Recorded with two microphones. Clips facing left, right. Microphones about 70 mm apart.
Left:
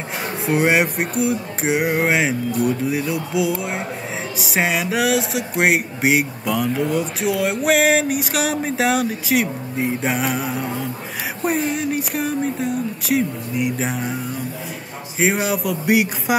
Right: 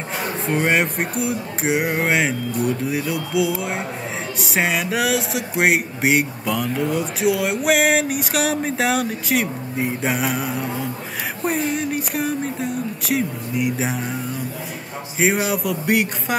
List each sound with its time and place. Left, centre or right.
0.5 s speech: centre